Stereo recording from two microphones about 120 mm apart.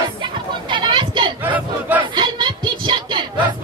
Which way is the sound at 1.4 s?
15° right (ahead or behind).